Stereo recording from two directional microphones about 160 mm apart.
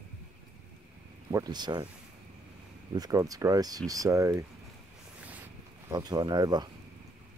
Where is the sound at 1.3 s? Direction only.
25° right (ahead or behind).